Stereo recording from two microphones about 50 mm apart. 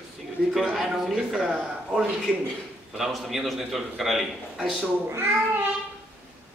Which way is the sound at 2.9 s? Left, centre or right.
Centre.